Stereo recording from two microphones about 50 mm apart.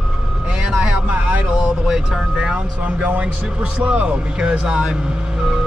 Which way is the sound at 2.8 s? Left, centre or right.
Right.